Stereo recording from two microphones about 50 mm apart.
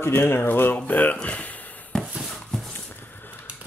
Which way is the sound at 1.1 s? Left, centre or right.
Left.